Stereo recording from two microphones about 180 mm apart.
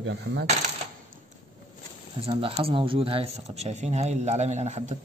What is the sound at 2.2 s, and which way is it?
Speech, 30° right (ahead or behind).